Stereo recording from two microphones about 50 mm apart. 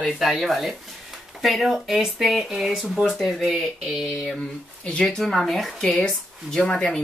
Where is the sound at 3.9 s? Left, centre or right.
Centre.